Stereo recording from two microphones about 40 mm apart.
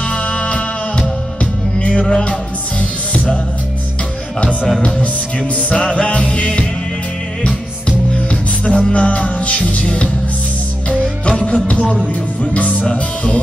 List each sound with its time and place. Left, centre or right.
0.0 s music: left
4.4 s music: left
8.7 s music: left
11.2 s music: left